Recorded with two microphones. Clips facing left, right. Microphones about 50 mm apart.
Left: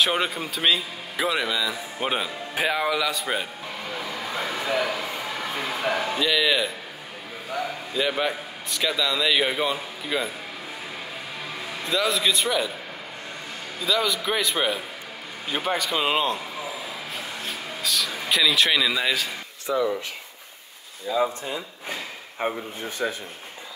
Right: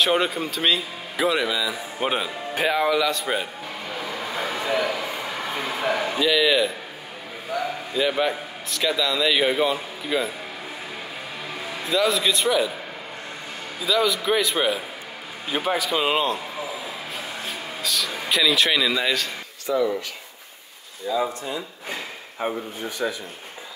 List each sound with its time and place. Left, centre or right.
0.0 s speech: centre
4.1 s a sound: centre
4.9 s a sound: centre
5.6 s a man's voice: centre
11.8 s speech: centre
13.7 s a man's voice: centre
17.5 s a sound: centre
19.7 s speech: centre
21.1 s speech: centre
22.8 s speech: left